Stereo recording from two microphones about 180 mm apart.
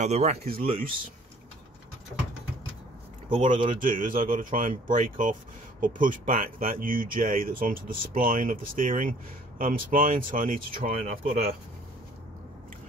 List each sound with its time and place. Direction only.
0.0 s speech: 40° right (ahead or behind)
0.4 s speech: 55° right (ahead or behind)
3.4 s speech: 45° right (ahead or behind)
11.2 s speech: 35° right (ahead or behind)